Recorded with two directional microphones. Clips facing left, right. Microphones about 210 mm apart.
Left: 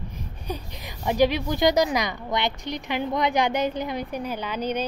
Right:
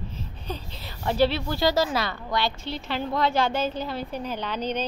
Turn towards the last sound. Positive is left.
turn(degrees=10)  # may be behind; listen again after turning